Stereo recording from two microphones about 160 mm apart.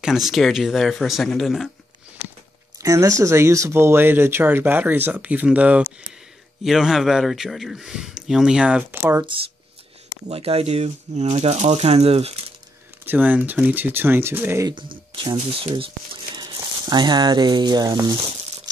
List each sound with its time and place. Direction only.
0.0 s a man's voice: centre (ahead or behind)
2.8 s a man's voice: 20° right (ahead or behind)
9.3 s speech: 30° right (ahead or behind)
13.0 s speech: 10° right (ahead or behind)
15.3 s speech: 35° right (ahead or behind)